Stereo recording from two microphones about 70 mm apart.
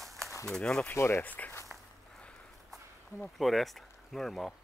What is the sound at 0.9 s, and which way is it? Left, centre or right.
Speech, left.